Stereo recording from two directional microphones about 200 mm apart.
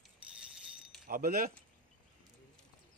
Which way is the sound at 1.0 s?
45° right (ahead or behind).